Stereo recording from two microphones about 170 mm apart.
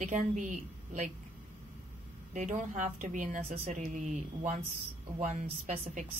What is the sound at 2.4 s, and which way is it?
Speech, 50° right (ahead or behind).